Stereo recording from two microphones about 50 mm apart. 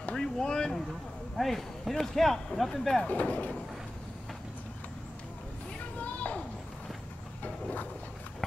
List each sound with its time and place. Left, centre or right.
0.1 s a sound: centre
1.3 s speech: centre
3.1 s speech: left
5.9 s children playing: left